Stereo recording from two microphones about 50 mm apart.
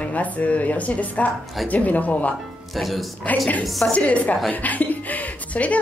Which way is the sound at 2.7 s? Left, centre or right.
Centre.